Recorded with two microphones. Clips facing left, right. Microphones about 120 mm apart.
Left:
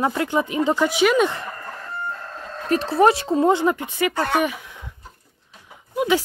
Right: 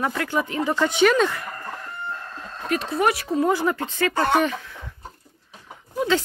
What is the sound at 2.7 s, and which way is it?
Speech, 35° left (ahead or behind).